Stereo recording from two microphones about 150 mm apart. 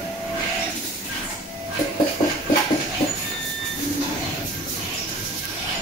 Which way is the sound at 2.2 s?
40° left (ahead or behind).